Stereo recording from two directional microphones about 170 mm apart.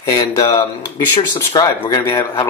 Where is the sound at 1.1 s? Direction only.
25° left (ahead or behind).